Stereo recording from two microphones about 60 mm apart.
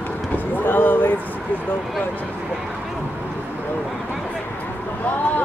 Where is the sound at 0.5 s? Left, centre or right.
Left.